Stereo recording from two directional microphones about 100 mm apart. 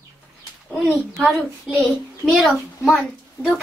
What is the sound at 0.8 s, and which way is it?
A child's voice, 5° left (ahead or behind).